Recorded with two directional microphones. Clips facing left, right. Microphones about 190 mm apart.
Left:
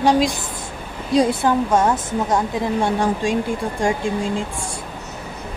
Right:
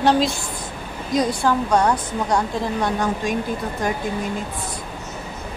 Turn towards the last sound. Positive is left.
turn(degrees=30)  # may be behind; listen again after turning